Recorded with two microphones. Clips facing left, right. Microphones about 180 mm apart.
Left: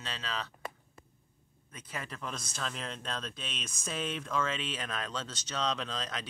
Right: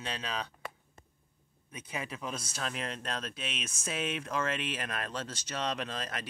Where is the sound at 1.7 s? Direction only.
10° right (ahead or behind).